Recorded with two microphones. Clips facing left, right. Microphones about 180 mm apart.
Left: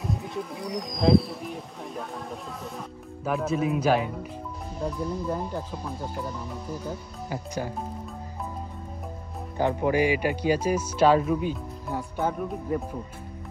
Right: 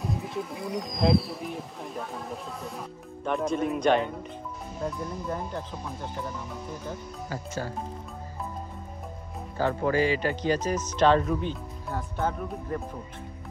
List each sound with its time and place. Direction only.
0.0 s speech: centre (ahead or behind)
6.9 s speech: 15° left (ahead or behind)
9.6 s speech: 15° left (ahead or behind)